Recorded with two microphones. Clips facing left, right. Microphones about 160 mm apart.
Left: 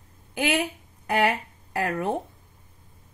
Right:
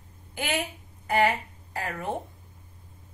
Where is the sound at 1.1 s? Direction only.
55° left (ahead or behind).